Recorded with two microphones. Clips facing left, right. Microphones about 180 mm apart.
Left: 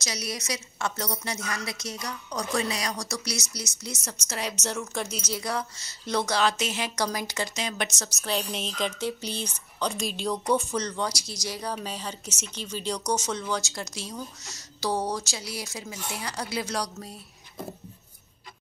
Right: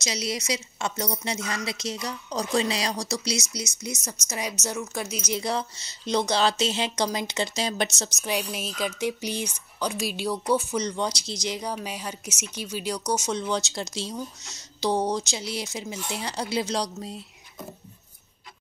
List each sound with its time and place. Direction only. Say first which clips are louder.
0.0 s a woman's voice: right 4 dB; 25° right (ahead or behind); by 5.2 s 5° right (ahead or behind)
5.3 s a woman's voice: right 5 dB; 25° right (ahead or behind)
8.2 s a woman's voice: even; 10° right (ahead or behind)